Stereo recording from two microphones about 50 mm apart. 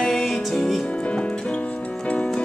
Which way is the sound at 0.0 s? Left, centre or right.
Centre.